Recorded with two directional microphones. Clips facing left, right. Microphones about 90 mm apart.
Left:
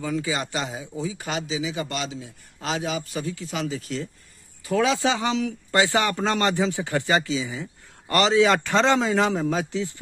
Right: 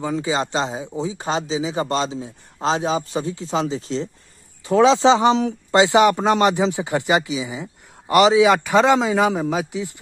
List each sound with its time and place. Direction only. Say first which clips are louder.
0.0 s a man's voice: right 5 dB; 25° right (ahead or behind)